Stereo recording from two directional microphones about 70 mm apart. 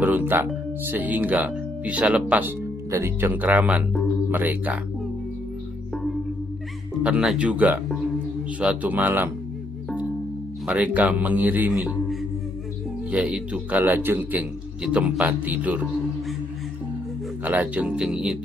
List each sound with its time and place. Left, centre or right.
0.0 s speech: right
7.0 s music: centre
7.3 s speech: centre
10.7 s speech: right
13.1 s speech: centre
13.7 s speech: right
14.8 s speech: centre
17.5 s speech: right
17.8 s music: centre